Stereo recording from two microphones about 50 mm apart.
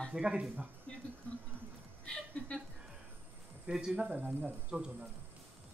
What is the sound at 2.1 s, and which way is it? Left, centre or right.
Chuckle, centre.